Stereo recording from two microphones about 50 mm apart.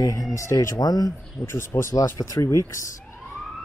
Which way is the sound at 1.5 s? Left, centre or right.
Left.